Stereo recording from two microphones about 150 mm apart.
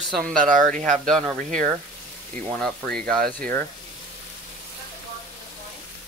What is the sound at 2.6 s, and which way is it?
Speech, 5° left (ahead or behind).